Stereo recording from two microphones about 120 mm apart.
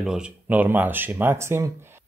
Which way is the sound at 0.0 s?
5° right (ahead or behind).